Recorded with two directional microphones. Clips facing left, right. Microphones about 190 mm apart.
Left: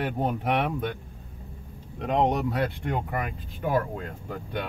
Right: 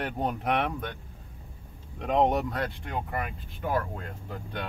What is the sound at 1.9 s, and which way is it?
Speech, centre (ahead or behind).